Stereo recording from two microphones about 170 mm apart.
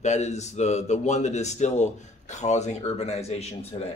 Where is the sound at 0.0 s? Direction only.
40° left (ahead or behind).